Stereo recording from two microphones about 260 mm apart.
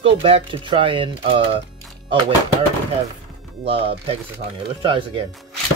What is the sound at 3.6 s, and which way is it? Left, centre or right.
Speech, right.